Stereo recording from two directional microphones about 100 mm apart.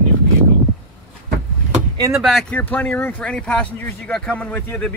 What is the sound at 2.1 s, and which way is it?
Speech, centre (ahead or behind).